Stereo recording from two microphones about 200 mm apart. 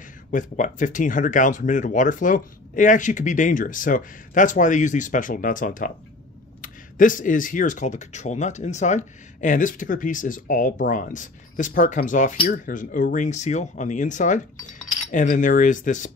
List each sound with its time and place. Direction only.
0.3 s speech: 40° left (ahead or behind)